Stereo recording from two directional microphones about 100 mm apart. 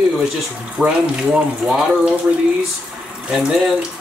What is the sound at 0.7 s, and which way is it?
Speech, 5° right (ahead or behind).